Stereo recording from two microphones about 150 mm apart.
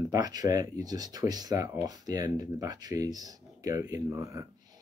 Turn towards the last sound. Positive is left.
turn(degrees=-20)  # may be behind; listen again after turning